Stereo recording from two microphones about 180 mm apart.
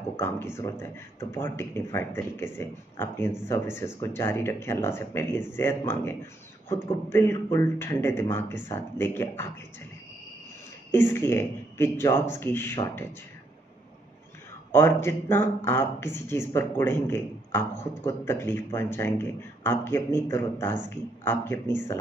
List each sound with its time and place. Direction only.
0.2 s speech: 15° left (ahead or behind)
10.9 s speech: 10° left (ahead or behind)
14.7 s speech: 10° left (ahead or behind)